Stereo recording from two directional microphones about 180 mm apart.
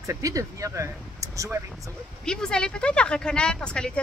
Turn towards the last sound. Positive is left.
turn(degrees=5)  # may be behind; listen again after turning